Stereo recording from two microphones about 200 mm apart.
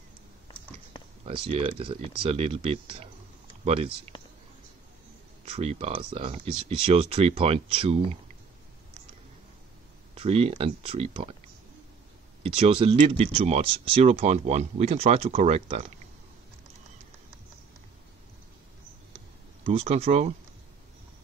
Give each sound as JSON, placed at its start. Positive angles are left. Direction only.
{"t": 1.2, "sound": "speech", "side_deg": -25}
{"t": 5.4, "sound": "speech", "side_deg": -30}
{"t": 10.1, "sound": "speech", "side_deg": -30}
{"t": 12.4, "sound": "speech", "side_deg": -30}
{"t": 19.1, "sound": "computer keyboard", "side_deg": -30}